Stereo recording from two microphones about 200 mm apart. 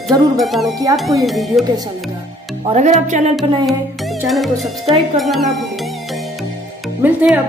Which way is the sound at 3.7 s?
Centre (ahead or behind).